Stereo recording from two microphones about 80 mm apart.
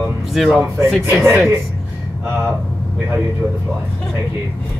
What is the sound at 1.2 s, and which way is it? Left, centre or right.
Speech, right.